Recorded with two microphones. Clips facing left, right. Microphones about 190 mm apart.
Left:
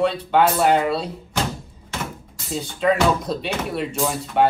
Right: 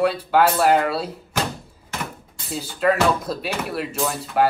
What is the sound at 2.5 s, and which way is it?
Speech, 5° right (ahead or behind).